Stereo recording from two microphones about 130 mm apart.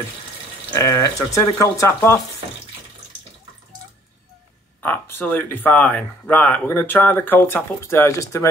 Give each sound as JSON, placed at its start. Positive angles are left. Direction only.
{"t": 0.7, "sound": "speech", "side_deg": 25}
{"t": 4.8, "sound": "speech", "side_deg": 15}